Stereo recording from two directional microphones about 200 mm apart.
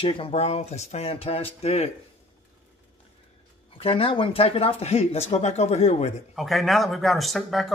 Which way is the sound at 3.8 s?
30° left (ahead or behind).